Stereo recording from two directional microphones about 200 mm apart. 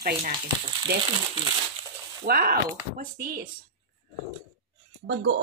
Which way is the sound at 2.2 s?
50° right (ahead or behind).